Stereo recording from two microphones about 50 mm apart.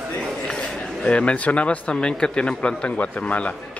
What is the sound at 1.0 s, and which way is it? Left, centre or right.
A man's voice, left.